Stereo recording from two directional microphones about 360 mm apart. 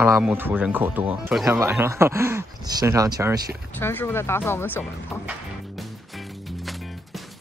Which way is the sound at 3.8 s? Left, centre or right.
Centre.